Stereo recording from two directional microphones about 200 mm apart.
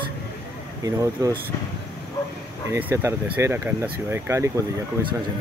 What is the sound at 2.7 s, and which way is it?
Speech, 10° right (ahead or behind).